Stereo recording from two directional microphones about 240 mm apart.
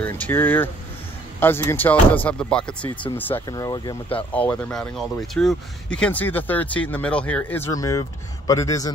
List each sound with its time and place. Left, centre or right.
0.0 s speech: centre
4.3 s speech: centre